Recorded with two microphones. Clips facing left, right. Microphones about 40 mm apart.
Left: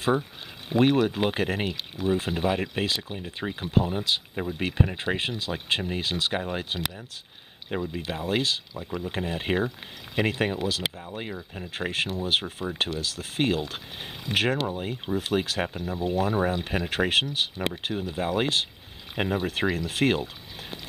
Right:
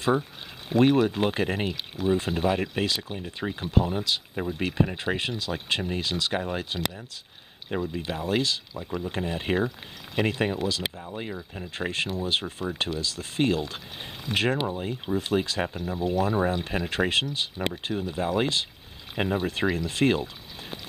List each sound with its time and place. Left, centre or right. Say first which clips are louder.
0.7 s speech: right 1 dB; centre
8.7 s speech: even; centre
19.1 s speech: even; centre